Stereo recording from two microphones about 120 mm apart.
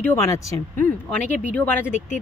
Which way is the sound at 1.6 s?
15° left (ahead or behind).